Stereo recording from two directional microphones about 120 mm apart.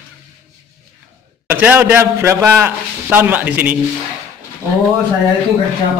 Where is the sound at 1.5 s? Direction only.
15° right (ahead or behind).